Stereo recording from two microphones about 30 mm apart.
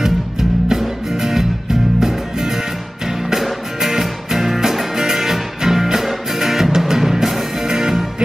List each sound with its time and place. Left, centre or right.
0.0 s music: centre